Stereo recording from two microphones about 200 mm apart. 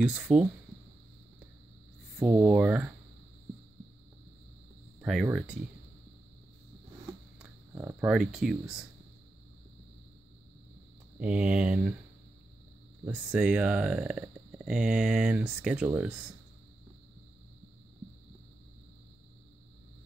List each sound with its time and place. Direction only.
0.0 s speech: 5° right (ahead or behind)
2.2 s speech: 5° right (ahead or behind)
5.0 s speech: 5° right (ahead or behind)
7.3 s speech: 10° right (ahead or behind)
11.1 s speech: 5° right (ahead or behind)
13.0 s speech: 5° right (ahead or behind)